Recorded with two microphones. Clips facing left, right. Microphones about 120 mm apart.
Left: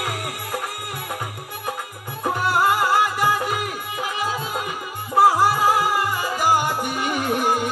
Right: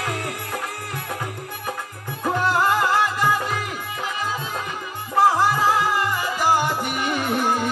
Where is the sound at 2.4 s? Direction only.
10° left (ahead or behind).